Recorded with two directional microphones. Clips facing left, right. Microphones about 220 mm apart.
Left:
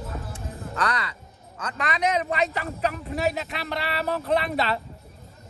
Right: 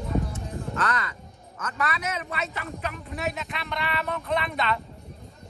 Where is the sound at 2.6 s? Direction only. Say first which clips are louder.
Left 6 dB; 35° left (ahead or behind).